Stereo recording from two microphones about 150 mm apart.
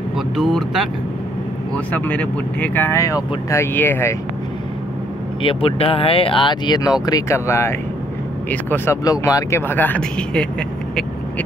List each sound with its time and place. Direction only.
0.4 s speech: centre (ahead or behind)
1.9 s speech: 10° left (ahead or behind)
5.4 s speech: 35° left (ahead or behind); by 10.5 s 5° left (ahead or behind)